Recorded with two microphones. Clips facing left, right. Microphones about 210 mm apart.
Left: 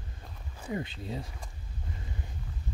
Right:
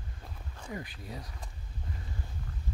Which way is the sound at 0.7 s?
25° left (ahead or behind).